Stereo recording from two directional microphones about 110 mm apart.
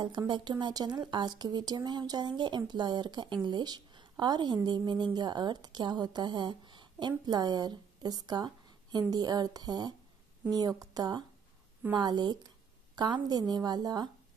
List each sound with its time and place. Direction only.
0.3 s a woman's voice: 45° right (ahead or behind)